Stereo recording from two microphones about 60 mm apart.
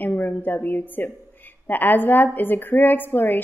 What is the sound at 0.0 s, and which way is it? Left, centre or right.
A woman's voice, left.